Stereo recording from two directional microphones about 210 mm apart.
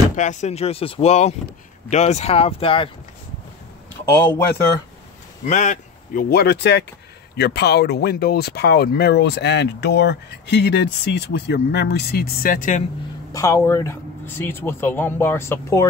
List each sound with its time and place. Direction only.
0.1 s speech: 35° left (ahead or behind)
4.1 s speech: 10° left (ahead or behind)
5.4 s speech: 35° left (ahead or behind)
13.3 s speech: 15° left (ahead or behind)